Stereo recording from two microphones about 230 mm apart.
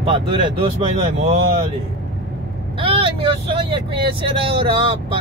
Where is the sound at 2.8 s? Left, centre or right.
Right.